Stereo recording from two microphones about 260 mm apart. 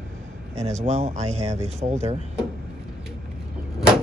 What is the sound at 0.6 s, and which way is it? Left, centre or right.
Speech, right.